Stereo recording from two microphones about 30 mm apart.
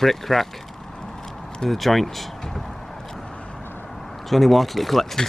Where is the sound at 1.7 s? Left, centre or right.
Centre.